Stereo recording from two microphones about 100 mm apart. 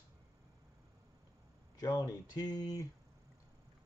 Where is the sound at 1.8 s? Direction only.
40° left (ahead or behind).